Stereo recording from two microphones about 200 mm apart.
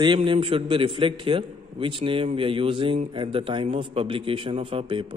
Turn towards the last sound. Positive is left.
turn(degrees=-25)  # may be behind; listen again after turning